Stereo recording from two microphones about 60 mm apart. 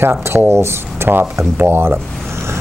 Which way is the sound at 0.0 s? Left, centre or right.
Right.